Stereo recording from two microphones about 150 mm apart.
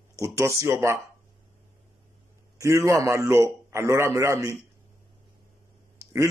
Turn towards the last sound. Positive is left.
turn(degrees=-20)  # may be behind; listen again after turning